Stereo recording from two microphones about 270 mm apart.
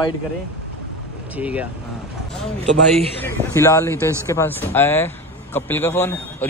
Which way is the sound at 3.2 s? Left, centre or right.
Centre.